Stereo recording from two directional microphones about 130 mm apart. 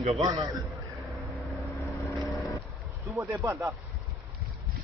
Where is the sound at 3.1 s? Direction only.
25° right (ahead or behind).